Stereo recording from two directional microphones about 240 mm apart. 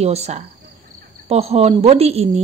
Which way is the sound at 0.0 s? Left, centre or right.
Right.